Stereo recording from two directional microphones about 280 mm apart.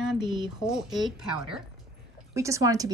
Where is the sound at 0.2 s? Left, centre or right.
Centre.